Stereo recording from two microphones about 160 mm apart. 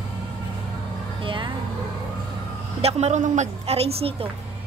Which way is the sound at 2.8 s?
40° right (ahead or behind).